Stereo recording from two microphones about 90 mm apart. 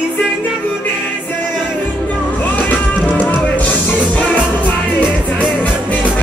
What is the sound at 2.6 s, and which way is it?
Music, 20° left (ahead or behind).